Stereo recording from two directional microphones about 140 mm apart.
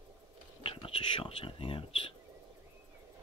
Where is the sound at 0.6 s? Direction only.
40° left (ahead or behind).